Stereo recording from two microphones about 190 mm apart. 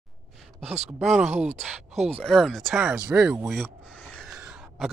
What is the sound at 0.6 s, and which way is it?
Speech, 35° right (ahead or behind).